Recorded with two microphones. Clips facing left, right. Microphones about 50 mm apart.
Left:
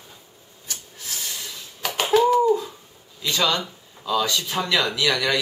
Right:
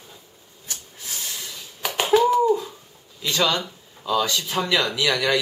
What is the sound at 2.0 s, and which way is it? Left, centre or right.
Speech, centre.